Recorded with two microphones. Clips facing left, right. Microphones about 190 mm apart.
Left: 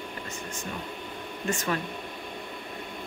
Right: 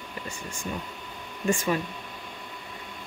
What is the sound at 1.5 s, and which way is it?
Speech, 15° right (ahead or behind).